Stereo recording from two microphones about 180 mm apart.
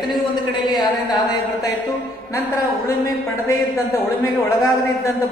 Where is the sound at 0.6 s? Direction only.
25° left (ahead or behind).